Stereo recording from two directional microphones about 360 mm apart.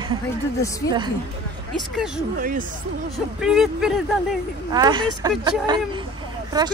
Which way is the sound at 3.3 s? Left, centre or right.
Centre.